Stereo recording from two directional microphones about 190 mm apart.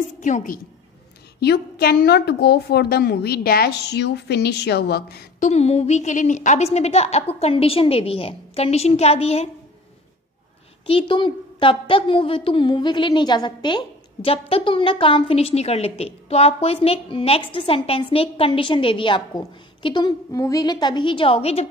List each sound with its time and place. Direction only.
0.2 s a woman's voice: 40° left (ahead or behind)
1.4 s a woman's voice: 55° left (ahead or behind)
5.5 s a woman's voice: 35° left (ahead or behind)
10.9 s a woman's voice: 25° left (ahead or behind)